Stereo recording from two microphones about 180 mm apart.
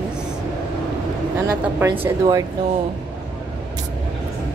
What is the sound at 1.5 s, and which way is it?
Speech, 15° right (ahead or behind).